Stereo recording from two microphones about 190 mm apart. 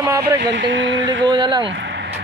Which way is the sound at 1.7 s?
65° right (ahead or behind).